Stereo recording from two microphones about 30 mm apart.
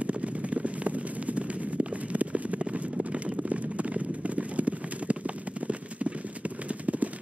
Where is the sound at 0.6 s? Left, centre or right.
Right.